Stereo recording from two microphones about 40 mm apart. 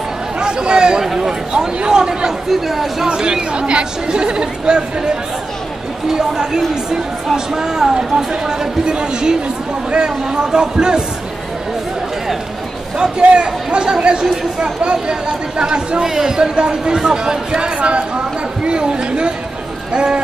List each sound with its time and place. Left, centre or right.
0.4 s a man's voice: right
1.0 s speech: centre
2.5 s speech: centre
3.5 s speech: right
6.1 s speech: centre
13.2 s speech: right